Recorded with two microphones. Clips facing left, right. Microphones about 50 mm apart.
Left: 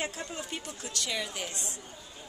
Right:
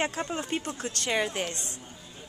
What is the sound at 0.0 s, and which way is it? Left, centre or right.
Speech, right.